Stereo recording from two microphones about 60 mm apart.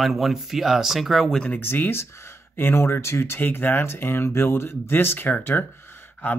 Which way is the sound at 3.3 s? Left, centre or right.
Left.